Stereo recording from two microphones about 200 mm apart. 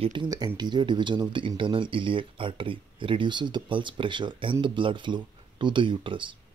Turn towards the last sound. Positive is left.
turn(degrees=-25)  # may be behind; listen again after turning